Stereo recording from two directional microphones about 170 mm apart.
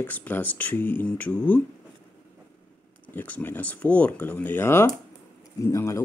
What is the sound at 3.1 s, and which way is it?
Speech, 10° left (ahead or behind).